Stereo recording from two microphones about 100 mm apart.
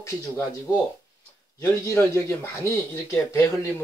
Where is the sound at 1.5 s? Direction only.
30° left (ahead or behind).